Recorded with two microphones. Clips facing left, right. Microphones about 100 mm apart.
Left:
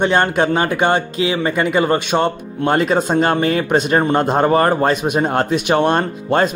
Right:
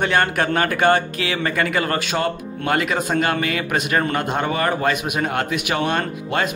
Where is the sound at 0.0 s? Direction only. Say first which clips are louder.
Left 4 dB; 20° left (ahead or behind).